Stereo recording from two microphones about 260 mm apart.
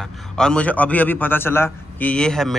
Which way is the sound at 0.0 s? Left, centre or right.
Centre.